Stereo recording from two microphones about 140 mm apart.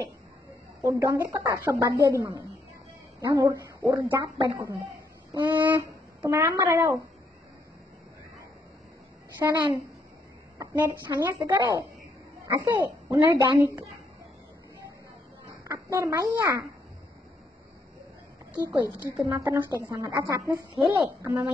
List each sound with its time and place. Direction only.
0.8 s a woman's voice: 20° right (ahead or behind)
9.4 s a woman's voice: 20° right (ahead or behind)
10.6 s a woman's voice: 25° right (ahead or behind)
15.4 s a sound: 20° right (ahead or behind)
18.5 s a woman's voice: 15° right (ahead or behind)